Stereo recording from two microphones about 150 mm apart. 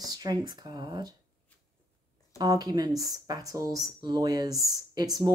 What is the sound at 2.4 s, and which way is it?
Speech, 25° right (ahead or behind).